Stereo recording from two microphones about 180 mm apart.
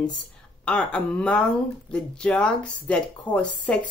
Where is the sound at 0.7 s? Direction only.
5° left (ahead or behind).